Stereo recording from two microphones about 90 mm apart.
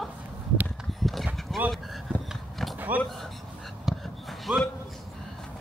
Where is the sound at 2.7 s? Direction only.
20° right (ahead or behind).